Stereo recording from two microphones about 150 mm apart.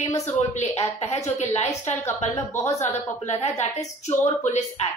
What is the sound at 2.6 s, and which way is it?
Speech, 20° left (ahead or behind).